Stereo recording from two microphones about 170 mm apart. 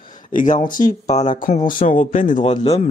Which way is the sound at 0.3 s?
50° left (ahead or behind).